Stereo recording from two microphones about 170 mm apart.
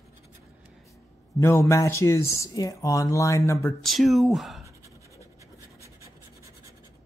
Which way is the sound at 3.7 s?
Centre (ahead or behind).